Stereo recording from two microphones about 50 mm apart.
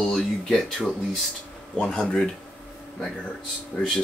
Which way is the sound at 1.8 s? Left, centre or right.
Centre.